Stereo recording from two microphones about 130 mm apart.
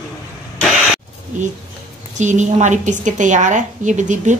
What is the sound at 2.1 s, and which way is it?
A woman's voice, 70° right (ahead or behind).